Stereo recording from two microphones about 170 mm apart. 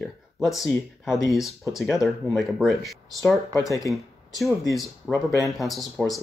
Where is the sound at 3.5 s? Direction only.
20° left (ahead or behind).